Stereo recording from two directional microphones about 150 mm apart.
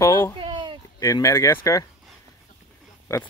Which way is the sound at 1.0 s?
20° left (ahead or behind).